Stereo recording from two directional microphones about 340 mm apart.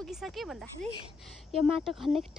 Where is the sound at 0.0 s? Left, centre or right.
Centre.